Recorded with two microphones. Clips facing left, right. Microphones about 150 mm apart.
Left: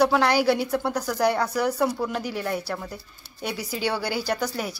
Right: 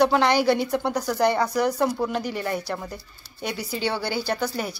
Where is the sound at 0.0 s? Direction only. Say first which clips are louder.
Right 1 dB; 5° left (ahead or behind).